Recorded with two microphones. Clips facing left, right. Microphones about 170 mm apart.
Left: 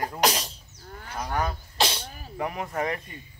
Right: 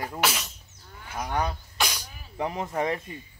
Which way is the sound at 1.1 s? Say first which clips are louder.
Even; 15° right (ahead or behind).